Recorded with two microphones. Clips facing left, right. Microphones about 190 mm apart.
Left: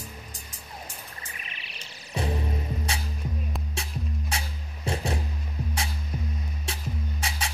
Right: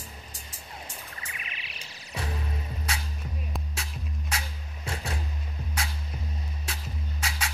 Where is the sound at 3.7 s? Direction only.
30° left (ahead or behind).